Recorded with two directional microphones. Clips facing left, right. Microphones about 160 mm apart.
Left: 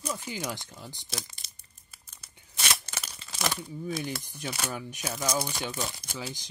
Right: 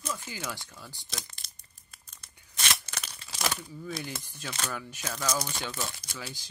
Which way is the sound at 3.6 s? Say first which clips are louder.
Left 4 dB; 20° left (ahead or behind).